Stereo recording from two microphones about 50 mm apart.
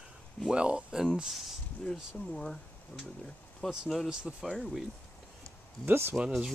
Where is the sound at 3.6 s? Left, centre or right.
Centre.